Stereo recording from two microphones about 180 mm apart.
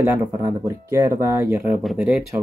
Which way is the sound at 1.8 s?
Centre (ahead or behind).